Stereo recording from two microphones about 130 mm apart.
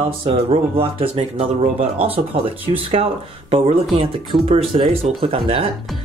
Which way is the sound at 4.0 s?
45° right (ahead or behind).